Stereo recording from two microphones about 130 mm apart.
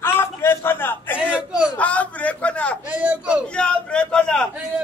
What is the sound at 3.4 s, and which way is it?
A man's voice, 10° left (ahead or behind).